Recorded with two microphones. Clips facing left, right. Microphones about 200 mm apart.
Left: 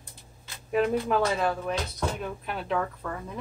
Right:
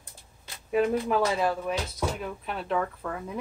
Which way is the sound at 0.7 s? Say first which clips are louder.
Even; 5° right (ahead or behind).